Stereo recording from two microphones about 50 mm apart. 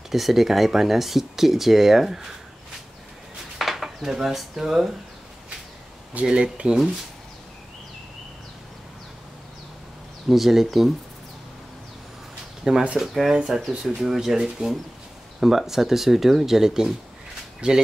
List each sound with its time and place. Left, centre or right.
0.1 s speech: centre
3.5 s speech: centre
6.2 s speech: centre
10.2 s speech: centre
12.7 s speech: centre